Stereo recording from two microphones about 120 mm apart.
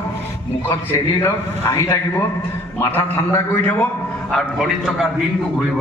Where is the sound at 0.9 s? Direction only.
25° left (ahead or behind).